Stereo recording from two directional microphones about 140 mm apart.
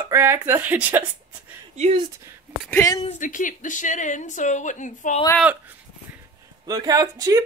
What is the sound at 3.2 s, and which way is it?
Speech, 70° left (ahead or behind).